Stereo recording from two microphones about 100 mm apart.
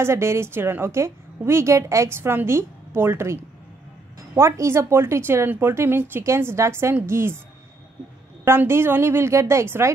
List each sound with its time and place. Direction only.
0.0 s a woman's voice: 25° right (ahead or behind)
4.4 s a woman's voice: 30° right (ahead or behind)
8.5 s a woman's voice: 25° right (ahead or behind)